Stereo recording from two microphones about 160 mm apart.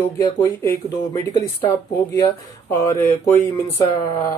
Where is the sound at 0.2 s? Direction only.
20° left (ahead or behind).